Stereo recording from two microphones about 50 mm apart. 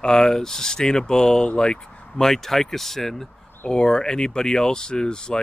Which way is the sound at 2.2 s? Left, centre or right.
Centre.